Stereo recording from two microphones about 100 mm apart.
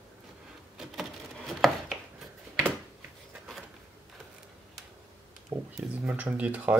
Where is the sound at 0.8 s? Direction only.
Centre (ahead or behind).